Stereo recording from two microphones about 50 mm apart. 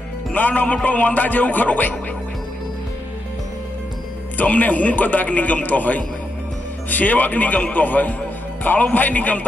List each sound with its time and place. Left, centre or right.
0.3 s a man's voice: left
4.4 s a man's voice: left